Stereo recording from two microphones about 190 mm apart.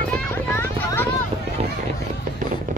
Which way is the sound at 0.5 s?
15° left (ahead or behind).